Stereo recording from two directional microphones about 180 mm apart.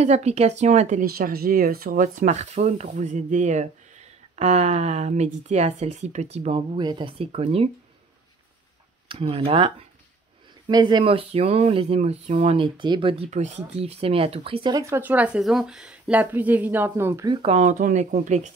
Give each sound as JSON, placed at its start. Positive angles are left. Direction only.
{"t": 0.0, "sound": "speech", "side_deg": -35}
{"t": 9.1, "sound": "speech", "side_deg": -30}
{"t": 17.4, "sound": "speech", "side_deg": -35}